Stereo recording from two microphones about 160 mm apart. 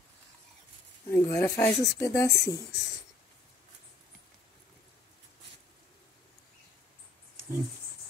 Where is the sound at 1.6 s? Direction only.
20° left (ahead or behind).